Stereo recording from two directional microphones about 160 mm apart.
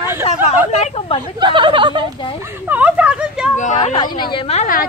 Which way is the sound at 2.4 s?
15° right (ahead or behind).